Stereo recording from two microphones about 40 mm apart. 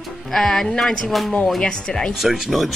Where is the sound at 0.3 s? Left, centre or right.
Centre.